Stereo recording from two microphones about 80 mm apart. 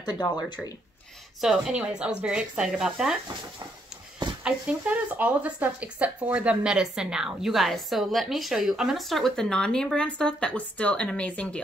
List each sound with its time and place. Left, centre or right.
0.0 s speech: left
1.4 s speech: centre
4.4 s speech: centre